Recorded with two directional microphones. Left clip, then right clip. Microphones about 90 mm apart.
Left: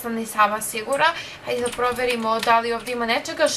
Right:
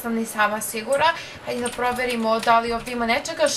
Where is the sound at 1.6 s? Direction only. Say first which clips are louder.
Left 1 dB; 20° left (ahead or behind).